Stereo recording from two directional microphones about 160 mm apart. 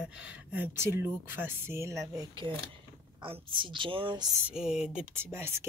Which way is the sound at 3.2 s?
30° right (ahead or behind).